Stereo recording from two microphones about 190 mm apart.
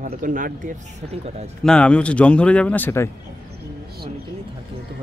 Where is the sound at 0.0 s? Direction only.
45° right (ahead or behind).